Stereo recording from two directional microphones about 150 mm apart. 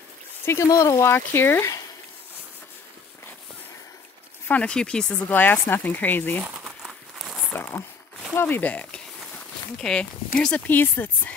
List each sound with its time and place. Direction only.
0.5 s speech: 20° left (ahead or behind)
4.5 s speech: 10° left (ahead or behind)
6.4 s speech: 10° right (ahead or behind)
6.8 s crumpling: centre (ahead or behind)
7.5 s speech: 15° left (ahead or behind)